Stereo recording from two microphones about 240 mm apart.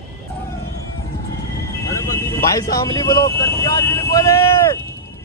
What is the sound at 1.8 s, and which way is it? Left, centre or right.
Vehicle, centre.